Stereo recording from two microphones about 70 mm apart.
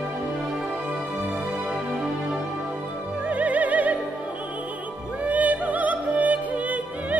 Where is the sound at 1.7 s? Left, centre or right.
Centre.